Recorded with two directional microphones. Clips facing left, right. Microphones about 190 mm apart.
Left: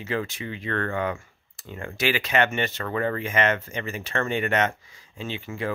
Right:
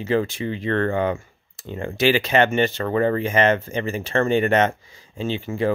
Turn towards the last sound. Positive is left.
turn(degrees=-30)  # may be behind; listen again after turning